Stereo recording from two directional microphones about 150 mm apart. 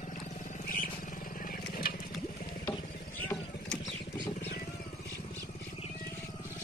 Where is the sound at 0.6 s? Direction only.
70° left (ahead or behind).